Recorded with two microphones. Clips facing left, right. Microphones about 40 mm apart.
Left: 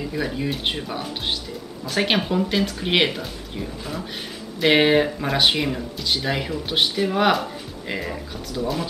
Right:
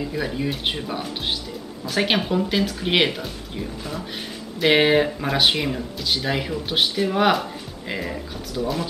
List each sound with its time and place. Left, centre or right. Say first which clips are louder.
0.0 s speech: even; centre